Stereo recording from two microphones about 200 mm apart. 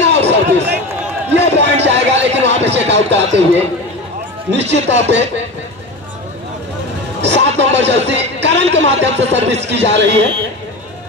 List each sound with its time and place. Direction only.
0.0 s run: 60° right (ahead or behind)
1.3 s a sound: 60° right (ahead or behind)
4.5 s speech: 60° right (ahead or behind)
7.2 s speech: 60° right (ahead or behind)